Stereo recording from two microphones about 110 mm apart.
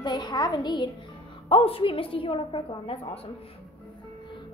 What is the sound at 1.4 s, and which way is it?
A woman's voice, 55° left (ahead or behind).